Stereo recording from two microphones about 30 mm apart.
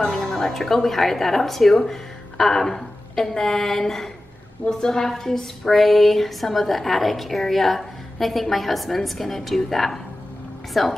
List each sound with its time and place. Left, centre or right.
0.4 s speech: centre
5.8 s a woman's voice: centre